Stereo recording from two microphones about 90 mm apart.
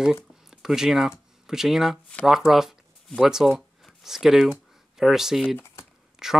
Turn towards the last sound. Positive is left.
turn(degrees=-5)  # may be behind; listen again after turning